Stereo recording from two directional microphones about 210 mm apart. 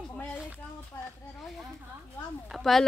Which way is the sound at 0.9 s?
10° left (ahead or behind).